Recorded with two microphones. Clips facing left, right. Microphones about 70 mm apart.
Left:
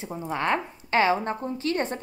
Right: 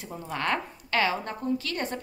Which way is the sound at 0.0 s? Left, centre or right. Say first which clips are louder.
Left 3 dB; left.